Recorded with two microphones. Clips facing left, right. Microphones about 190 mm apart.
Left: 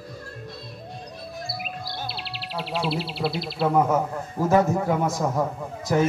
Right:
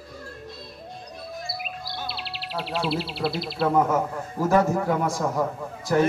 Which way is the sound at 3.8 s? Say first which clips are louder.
Left 1 dB; 20° left (ahead or behind).